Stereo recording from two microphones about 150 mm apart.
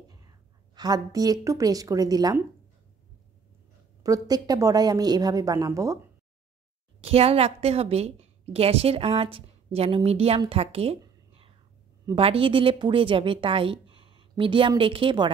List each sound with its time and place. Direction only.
0.7 s a woman's voice: 25° right (ahead or behind)
4.0 s a woman's voice: 25° right (ahead or behind)
7.0 s a woman's voice: 40° right (ahead or behind)
12.2 s a woman's voice: 40° right (ahead or behind)